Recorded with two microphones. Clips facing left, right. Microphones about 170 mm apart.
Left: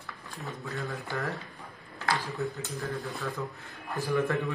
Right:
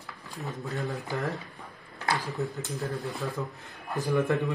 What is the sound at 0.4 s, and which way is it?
Speech, 20° right (ahead or behind).